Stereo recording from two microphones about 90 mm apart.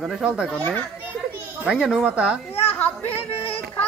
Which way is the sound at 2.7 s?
20° left (ahead or behind).